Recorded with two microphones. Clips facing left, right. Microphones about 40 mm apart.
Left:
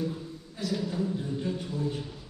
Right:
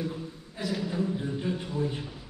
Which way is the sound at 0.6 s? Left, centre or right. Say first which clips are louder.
Right 1 dB; centre.